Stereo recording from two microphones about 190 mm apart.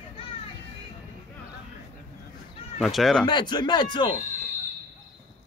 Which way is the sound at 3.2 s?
25° left (ahead or behind).